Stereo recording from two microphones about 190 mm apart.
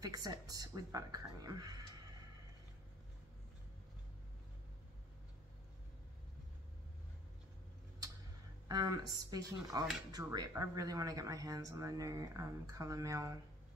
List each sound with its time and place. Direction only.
0.0 s a woman's voice: 20° right (ahead or behind)
8.6 s a woman's voice: 20° right (ahead or behind)